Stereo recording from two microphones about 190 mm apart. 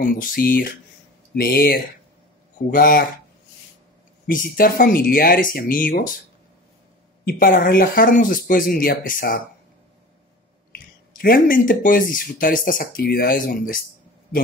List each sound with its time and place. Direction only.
0.0 s speech: 45° left (ahead or behind)
4.3 s speech: 45° left (ahead or behind)
7.2 s speech: 45° left (ahead or behind)
11.1 s speech: 50° left (ahead or behind)